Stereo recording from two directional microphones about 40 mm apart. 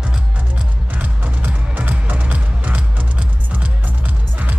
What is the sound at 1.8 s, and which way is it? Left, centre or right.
Music, right.